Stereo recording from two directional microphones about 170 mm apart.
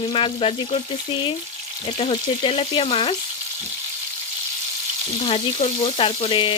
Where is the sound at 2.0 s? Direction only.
35° left (ahead or behind).